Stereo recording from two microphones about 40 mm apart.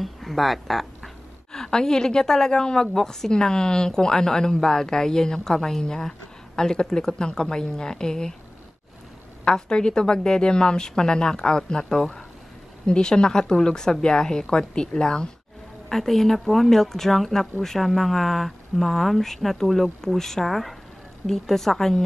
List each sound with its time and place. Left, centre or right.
0.0 s a woman's voice: centre
9.4 s a woman's voice: left
12.8 s a woman's voice: left